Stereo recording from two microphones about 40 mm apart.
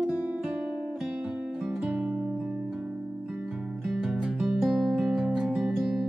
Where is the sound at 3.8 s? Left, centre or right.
Centre.